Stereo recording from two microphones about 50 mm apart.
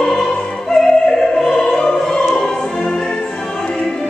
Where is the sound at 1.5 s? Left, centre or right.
Centre.